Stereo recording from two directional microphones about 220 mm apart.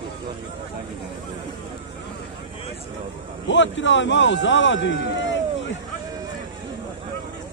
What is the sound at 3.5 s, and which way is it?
A man's voice, 55° left (ahead or behind).